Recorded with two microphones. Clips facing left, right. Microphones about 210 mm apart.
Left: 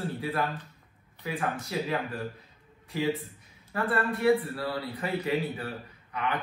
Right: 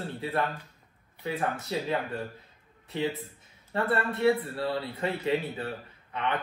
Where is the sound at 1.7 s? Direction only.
25° right (ahead or behind).